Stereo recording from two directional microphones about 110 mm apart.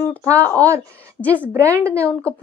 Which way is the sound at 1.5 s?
25° right (ahead or behind).